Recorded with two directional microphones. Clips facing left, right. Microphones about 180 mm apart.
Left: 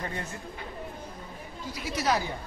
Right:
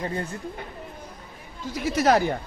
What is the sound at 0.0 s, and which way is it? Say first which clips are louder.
Speech: right 6 dB; 30° right (ahead or behind).